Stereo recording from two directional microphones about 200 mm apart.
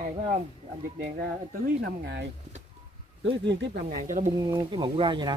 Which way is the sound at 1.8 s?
55° right (ahead or behind).